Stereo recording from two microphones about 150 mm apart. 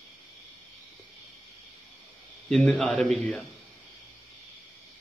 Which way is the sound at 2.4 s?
5° left (ahead or behind).